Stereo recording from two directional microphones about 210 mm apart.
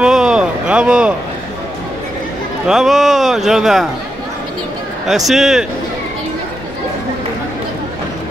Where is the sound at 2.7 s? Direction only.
Centre (ahead or behind).